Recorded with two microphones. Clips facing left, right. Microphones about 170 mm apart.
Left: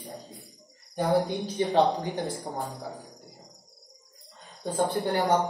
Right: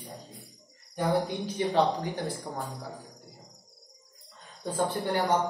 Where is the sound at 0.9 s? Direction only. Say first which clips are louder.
Left 3 dB; 30° left (ahead or behind).